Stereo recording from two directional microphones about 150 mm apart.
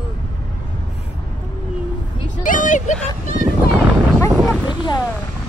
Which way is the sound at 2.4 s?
60° left (ahead or behind).